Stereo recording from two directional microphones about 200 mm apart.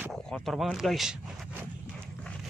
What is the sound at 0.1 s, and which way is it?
Speech, centre (ahead or behind).